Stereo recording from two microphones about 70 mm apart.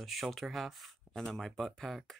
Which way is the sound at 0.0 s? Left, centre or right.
Centre.